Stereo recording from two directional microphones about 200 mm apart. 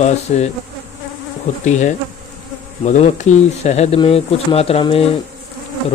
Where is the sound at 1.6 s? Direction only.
35° left (ahead or behind).